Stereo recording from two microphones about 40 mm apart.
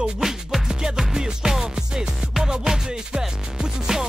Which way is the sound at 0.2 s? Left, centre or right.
Centre.